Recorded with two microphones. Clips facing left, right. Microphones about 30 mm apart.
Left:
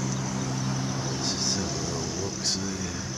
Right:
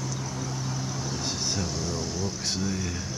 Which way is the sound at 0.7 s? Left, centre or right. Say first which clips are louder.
Left 2 dB; left.